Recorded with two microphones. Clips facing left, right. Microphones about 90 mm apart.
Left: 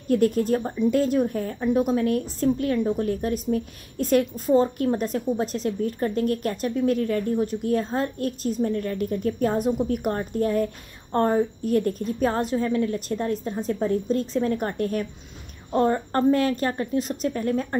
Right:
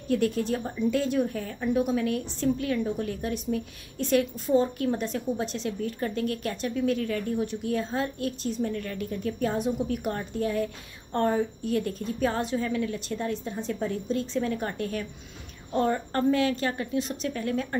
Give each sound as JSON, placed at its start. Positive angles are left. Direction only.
{"t": 0.1, "sound": "a woman's voice", "side_deg": 40}